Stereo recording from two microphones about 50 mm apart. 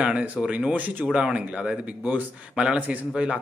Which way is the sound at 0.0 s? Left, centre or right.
Right.